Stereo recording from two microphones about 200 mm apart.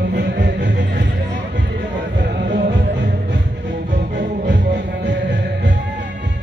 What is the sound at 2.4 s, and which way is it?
Music, 50° right (ahead or behind).